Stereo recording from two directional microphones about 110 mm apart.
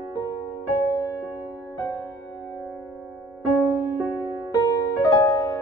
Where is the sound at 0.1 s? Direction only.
35° left (ahead or behind).